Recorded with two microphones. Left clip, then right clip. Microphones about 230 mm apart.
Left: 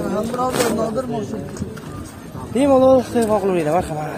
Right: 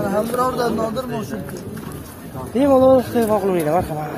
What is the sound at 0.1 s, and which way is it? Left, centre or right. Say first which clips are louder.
Speech: even; right.